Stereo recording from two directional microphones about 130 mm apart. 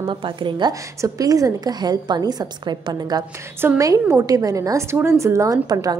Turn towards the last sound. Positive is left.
turn(degrees=-30)  # may be behind; listen again after turning